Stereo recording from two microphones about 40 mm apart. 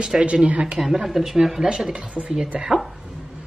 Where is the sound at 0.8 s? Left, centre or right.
Centre.